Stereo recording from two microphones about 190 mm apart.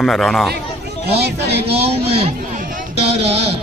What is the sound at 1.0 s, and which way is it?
Speech, 60° right (ahead or behind).